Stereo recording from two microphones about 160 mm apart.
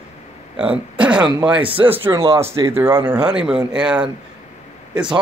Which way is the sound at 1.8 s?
10° right (ahead or behind).